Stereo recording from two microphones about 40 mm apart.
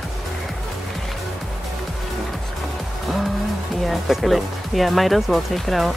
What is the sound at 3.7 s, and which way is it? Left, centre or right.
Speech, centre.